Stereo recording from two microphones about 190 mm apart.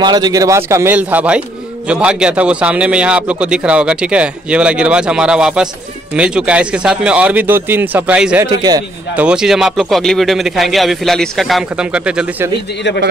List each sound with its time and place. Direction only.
0.0 s a man's voice: 20° right (ahead or behind); by 8.5 s 5° right (ahead or behind)
8.5 s a man's voice: 20° right (ahead or behind)
9.1 s a man's voice: 5° right (ahead or behind)